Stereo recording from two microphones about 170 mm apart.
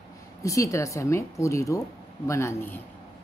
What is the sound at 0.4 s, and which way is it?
A woman's voice, 20° left (ahead or behind).